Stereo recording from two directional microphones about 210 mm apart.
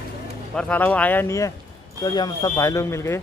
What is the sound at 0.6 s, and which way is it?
Speech, 5° left (ahead or behind).